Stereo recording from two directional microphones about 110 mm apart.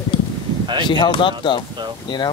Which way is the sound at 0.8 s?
45° left (ahead or behind).